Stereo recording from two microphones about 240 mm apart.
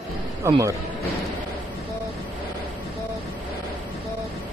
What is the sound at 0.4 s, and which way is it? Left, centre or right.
Speech, centre.